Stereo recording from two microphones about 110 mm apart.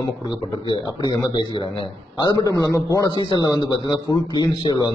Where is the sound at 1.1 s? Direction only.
45° left (ahead or behind).